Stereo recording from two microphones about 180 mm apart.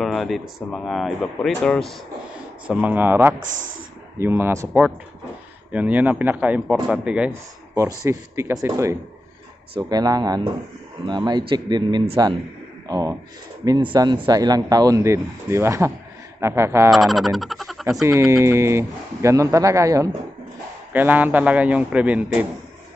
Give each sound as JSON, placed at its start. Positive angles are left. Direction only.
{"t": 0.0, "sound": "speech", "side_deg": 0}
{"t": 2.7, "sound": "speech", "side_deg": -10}
{"t": 7.7, "sound": "speech", "side_deg": -15}
{"t": 16.9, "sound": "music", "side_deg": 0}
{"t": 18.0, "sound": "speech", "side_deg": -15}